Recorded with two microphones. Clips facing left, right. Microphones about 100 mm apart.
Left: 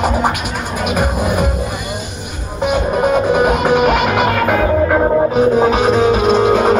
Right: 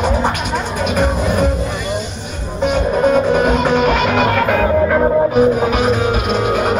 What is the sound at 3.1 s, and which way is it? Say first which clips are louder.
Music: even; 10° left (ahead or behind).